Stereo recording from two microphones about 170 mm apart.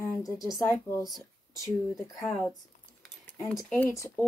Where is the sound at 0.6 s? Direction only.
15° left (ahead or behind).